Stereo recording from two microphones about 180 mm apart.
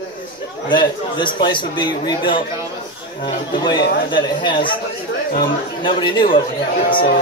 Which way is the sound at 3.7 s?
85° left.